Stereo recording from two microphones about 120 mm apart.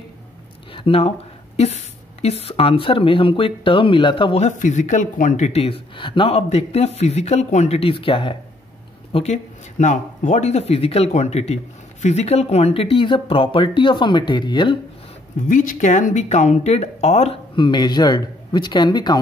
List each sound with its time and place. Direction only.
0.7 s speech: 50° left (ahead or behind)
1.6 s speech: 60° left (ahead or behind); by 4.4 s 45° left (ahead or behind)
4.4 s speech: 85° left; by 6.3 s 45° left (ahead or behind)
6.3 s speech: 60° left (ahead or behind); by 8.4 s 45° left (ahead or behind)
9.1 s speech: 70° left (ahead or behind); by 14.8 s 40° left (ahead or behind)
15.3 s speech: 90° left; by 17.4 s 60° left (ahead or behind)
17.6 s a man's voice: 40° left (ahead or behind)